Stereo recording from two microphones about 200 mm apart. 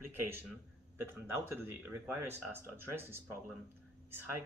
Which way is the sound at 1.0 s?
10° right (ahead or behind).